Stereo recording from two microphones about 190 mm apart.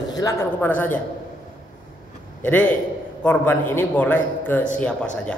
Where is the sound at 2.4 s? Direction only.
10° left (ahead or behind).